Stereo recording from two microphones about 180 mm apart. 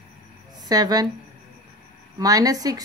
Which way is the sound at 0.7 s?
20° right (ahead or behind).